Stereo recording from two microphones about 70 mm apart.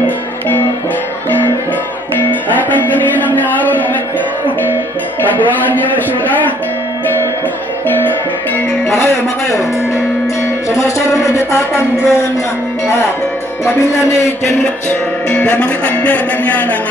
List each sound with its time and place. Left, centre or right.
2.5 s music: left
8.8 s speech: left
11.3 s speech: left
13.7 s speech: left
15.2 s speech: centre